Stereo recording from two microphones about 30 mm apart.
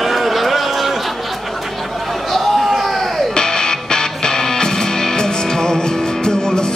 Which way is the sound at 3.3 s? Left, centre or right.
Left.